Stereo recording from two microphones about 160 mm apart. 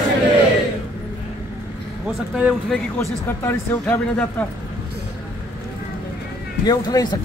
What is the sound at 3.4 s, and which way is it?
A man's voice, 10° left (ahead or behind).